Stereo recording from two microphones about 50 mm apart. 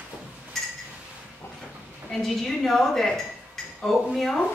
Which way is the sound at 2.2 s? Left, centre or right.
Centre.